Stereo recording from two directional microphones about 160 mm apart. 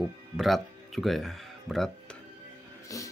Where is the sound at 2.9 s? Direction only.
20° left (ahead or behind).